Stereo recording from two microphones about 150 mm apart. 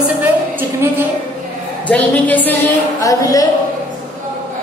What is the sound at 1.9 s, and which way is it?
Speech, 10° left (ahead or behind).